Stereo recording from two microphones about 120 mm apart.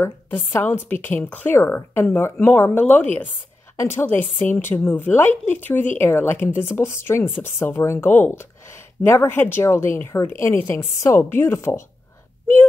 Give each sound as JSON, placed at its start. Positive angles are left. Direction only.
{"t": 0.0, "sound": "a woman's voice", "side_deg": 20}